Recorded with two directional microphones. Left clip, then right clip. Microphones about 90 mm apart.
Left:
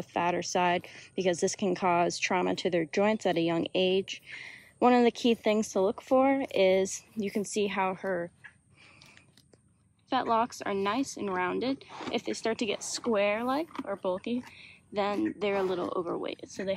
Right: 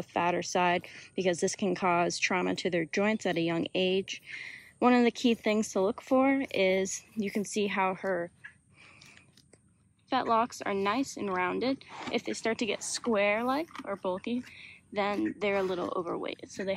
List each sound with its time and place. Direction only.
0.0 s speech: 20° left (ahead or behind)
10.0 s speech: 30° left (ahead or behind)